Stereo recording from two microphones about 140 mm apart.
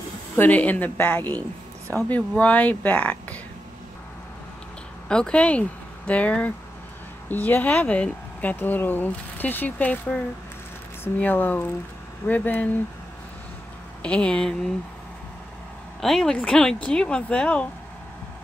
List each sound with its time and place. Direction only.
0.4 s speech: 10° left (ahead or behind)
5.0 s speech: 5° left (ahead or behind)
14.0 s speech: 5° left (ahead or behind)
16.0 s speech: 5° left (ahead or behind)